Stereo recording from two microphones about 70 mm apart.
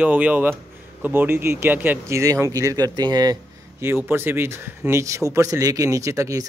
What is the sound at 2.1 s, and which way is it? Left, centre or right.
Speech, right.